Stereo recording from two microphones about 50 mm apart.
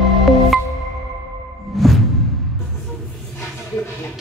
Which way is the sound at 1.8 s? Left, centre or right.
Centre.